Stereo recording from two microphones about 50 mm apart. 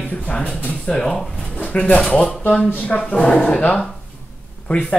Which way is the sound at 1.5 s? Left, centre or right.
Left.